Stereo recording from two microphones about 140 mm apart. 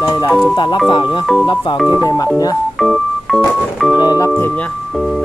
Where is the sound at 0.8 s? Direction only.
35° left (ahead or behind).